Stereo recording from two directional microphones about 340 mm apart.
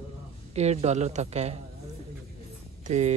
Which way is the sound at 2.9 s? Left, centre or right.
Centre.